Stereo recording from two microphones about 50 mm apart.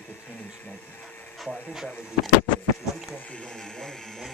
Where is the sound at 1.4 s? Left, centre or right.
Centre.